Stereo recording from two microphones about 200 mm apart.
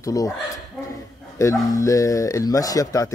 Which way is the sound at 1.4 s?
15° left (ahead or behind).